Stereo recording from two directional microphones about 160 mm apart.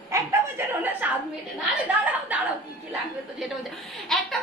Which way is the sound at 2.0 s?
10° right (ahead or behind).